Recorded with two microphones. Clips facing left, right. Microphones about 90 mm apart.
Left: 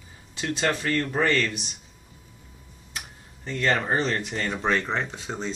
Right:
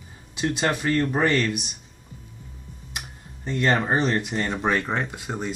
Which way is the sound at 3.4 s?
20° right (ahead or behind).